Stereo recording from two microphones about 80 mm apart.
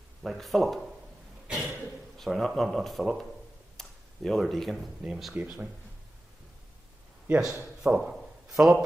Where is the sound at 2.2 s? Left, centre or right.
Centre.